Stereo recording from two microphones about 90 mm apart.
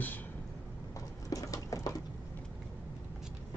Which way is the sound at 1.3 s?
40° left (ahead or behind).